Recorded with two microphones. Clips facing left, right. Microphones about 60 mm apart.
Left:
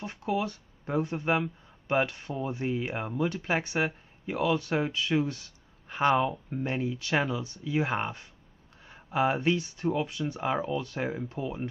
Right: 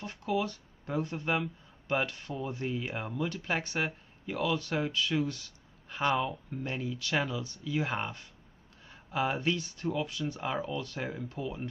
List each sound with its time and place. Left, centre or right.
0.0 s speech: centre